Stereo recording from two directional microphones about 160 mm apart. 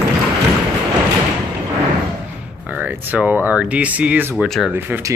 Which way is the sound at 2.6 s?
10° right (ahead or behind).